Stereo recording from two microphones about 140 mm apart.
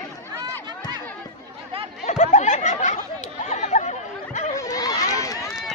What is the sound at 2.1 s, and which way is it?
Chatter, 60° left (ahead or behind).